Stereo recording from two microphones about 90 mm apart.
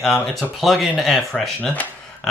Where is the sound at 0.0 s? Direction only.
5° left (ahead or behind).